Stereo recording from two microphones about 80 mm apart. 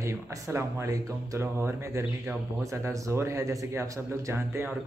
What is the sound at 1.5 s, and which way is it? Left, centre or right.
Speech, right.